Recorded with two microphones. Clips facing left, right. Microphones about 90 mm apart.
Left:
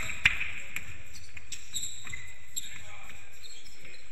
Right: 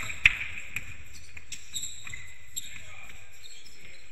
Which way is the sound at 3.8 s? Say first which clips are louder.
Left 1 dB; 20° left (ahead or behind).